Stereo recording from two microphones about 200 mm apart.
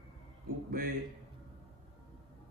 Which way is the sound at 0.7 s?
45° right (ahead or behind).